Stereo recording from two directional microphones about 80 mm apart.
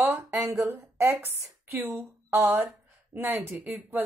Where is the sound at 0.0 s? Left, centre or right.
Right.